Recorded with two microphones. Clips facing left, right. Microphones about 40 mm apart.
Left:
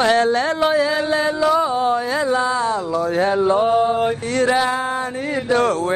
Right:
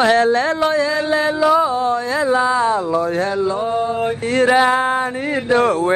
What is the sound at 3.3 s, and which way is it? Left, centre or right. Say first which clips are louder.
Mantra: left 3 dB; left.